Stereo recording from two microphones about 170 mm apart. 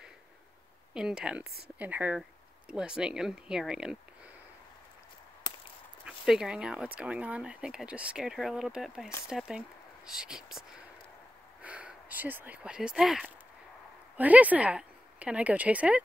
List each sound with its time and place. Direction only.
0.9 s speech: 5° right (ahead or behind)
6.0 s speech: 5° right (ahead or behind)
11.6 s a woman's voice: 10° right (ahead or behind)